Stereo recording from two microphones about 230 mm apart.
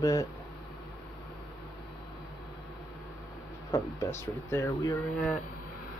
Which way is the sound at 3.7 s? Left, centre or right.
Centre.